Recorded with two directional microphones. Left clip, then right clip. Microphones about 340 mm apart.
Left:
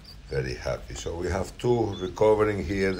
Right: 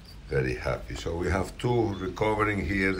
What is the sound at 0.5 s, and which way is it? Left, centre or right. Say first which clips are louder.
Speech: even; centre.